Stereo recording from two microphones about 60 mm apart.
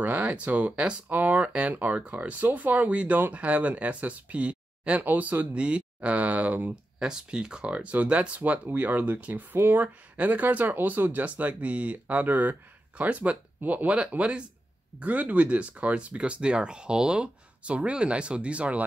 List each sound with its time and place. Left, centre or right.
0.0 s speech: right
6.7 s speech: centre; by 9.6 s right
9.6 s speech: right
10.1 s speech: right